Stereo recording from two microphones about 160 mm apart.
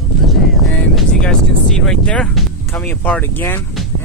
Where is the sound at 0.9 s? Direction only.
5° left (ahead or behind).